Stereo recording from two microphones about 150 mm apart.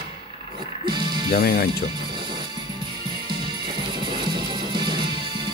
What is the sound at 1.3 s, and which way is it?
Speech, 90° left.